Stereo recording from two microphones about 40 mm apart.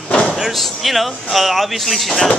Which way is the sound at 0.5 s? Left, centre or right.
Centre.